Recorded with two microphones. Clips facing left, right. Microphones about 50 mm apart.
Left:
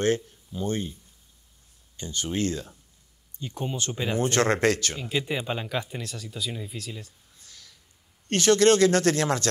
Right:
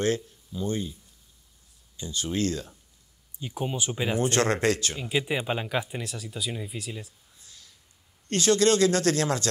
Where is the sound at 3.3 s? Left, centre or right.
Centre.